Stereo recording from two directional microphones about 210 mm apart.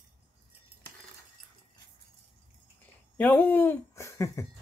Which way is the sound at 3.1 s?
10° left (ahead or behind).